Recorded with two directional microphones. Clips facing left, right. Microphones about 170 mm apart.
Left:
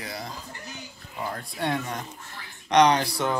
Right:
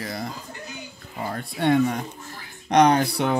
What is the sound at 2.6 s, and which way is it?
Speech, 50° right (ahead or behind).